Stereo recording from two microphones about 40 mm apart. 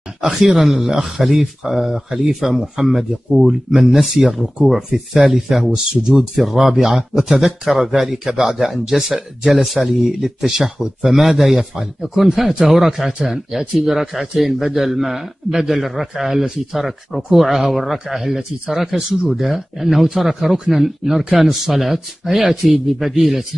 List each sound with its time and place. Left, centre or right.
0.3 s a man's voice: centre
4.7 s a man's voice: centre